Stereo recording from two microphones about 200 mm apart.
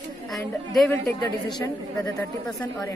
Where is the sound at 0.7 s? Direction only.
5° left (ahead or behind).